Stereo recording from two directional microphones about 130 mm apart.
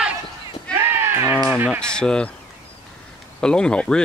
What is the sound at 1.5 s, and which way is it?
Speech, 15° right (ahead or behind).